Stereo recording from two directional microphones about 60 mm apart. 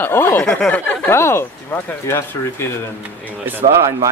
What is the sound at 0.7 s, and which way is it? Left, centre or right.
Speech, left.